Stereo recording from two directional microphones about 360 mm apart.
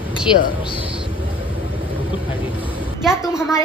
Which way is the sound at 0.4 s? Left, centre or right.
Centre.